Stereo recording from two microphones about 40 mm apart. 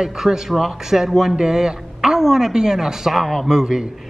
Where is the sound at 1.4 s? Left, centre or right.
Centre.